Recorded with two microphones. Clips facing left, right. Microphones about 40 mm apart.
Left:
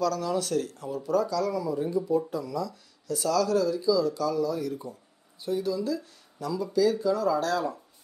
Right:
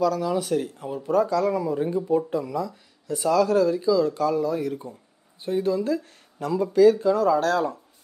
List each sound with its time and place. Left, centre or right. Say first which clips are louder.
0.0 s speech: right 4 dB; centre; by 7.8 s right